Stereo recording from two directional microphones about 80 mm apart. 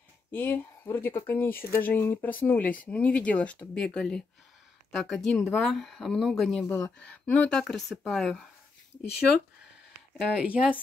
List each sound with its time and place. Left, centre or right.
0.3 s speech: left; by 6.6 s centre
6.7 s speech: centre
10.3 s speech: centre